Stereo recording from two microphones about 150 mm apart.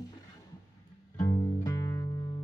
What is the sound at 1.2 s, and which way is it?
Music, 25° left (ahead or behind).